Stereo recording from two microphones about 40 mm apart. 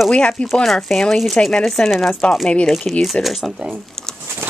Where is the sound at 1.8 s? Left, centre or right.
Centre.